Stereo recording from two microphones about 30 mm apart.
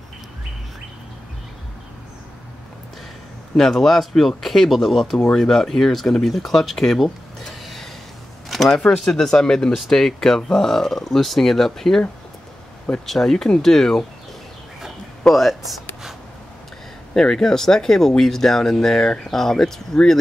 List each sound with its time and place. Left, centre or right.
3.5 s speech: centre
8.5 s a sound: centre
8.8 s speech: left
13.0 s speech: centre
15.3 s speech: centre
17.1 s speech: centre